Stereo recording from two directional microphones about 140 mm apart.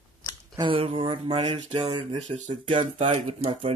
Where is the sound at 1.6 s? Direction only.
50° right (ahead or behind).